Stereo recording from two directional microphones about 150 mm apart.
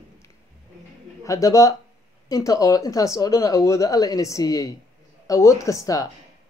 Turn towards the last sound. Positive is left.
turn(degrees=20)  # may be behind; listen again after turning